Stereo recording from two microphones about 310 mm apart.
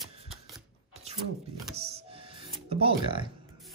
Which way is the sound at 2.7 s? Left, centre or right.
Centre.